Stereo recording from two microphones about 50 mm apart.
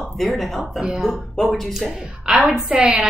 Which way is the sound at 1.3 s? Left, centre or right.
Centre.